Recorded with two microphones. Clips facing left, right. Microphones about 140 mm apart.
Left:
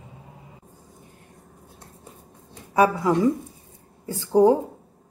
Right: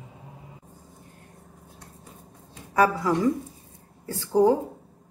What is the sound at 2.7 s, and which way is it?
A woman's voice, 15° left (ahead or behind).